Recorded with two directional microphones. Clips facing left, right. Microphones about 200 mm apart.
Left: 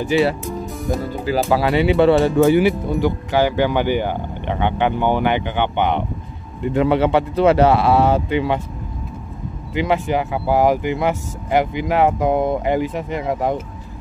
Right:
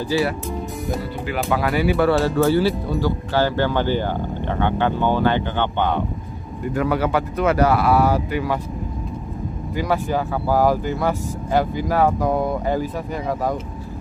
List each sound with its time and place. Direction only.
0.1 s speech: 20° left (ahead or behind)
1.2 s speech: 30° left (ahead or behind)
9.8 s speech: 20° left (ahead or behind)